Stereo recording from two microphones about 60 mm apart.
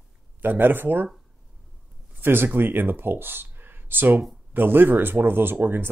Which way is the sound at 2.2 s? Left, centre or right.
Right.